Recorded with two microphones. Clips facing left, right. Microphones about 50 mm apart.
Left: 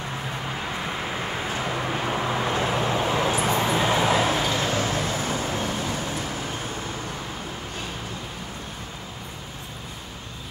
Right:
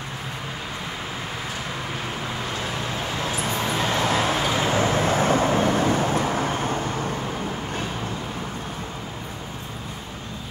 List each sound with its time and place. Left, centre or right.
2.0 s vehicle: centre
4.6 s vehicle: centre
5.0 s vehicle: right